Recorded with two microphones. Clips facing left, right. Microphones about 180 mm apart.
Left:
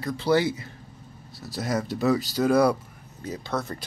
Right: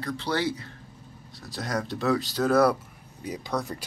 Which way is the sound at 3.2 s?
15° right (ahead or behind).